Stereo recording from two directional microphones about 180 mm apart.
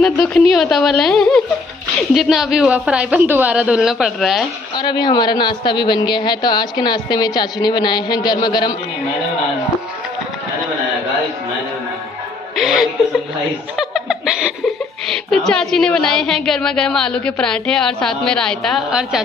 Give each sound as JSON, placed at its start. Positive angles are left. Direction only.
{"t": 0.0, "sound": "speech", "side_deg": 5}
{"t": 4.7, "sound": "a woman's voice", "side_deg": 25}
{"t": 12.5, "sound": "speech", "side_deg": 0}